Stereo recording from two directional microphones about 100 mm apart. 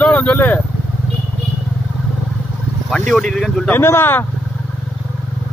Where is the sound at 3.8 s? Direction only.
20° left (ahead or behind).